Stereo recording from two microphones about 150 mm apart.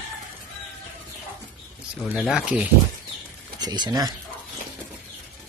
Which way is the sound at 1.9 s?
5° right (ahead or behind).